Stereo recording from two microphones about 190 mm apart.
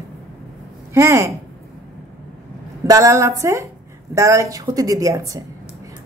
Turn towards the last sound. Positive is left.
turn(degrees=-20)  # may be behind; listen again after turning